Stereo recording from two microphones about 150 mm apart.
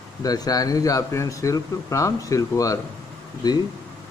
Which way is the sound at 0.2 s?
25° left (ahead or behind).